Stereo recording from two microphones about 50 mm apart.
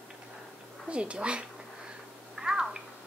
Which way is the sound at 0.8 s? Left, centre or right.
Right.